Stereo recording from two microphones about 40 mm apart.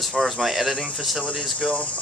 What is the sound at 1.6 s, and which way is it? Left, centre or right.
Speech, left.